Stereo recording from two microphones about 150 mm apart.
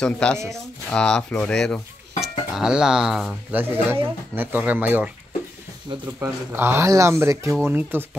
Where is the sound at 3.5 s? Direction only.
15° right (ahead or behind).